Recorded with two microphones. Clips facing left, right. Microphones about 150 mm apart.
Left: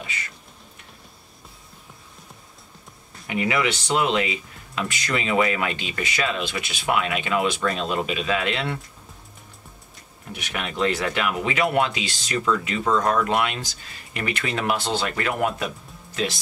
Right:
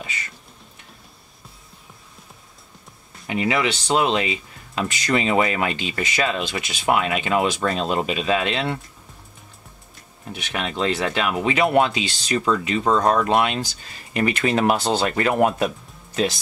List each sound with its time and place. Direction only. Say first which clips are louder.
3.3 s speech: right 2 dB; 25° right (ahead or behind)
10.5 s speech: right 1 dB; 25° right (ahead or behind)